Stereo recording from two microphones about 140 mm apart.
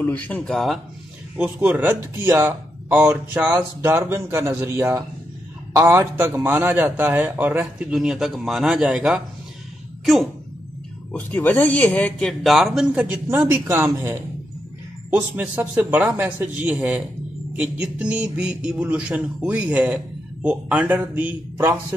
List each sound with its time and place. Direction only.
0.0 s speech: 10° left (ahead or behind)
1.3 s speech: 10° right (ahead or behind)
11.1 s speech: 10° left (ahead or behind); by 21.7 s 15° right (ahead or behind)